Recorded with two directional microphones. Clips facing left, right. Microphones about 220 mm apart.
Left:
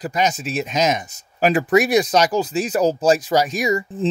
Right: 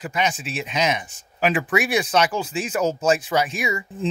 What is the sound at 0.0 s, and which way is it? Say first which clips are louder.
Speech: left 4 dB; 40° left (ahead or behind).